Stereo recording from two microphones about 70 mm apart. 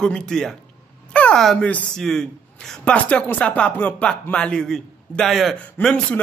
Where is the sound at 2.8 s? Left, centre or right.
Centre.